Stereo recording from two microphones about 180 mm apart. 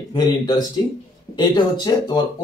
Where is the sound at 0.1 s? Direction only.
25° left (ahead or behind).